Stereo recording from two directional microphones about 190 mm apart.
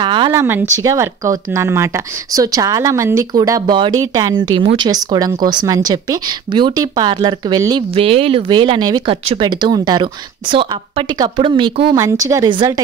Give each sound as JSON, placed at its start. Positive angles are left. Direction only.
{"t": 0.0, "sound": "speech", "side_deg": -25}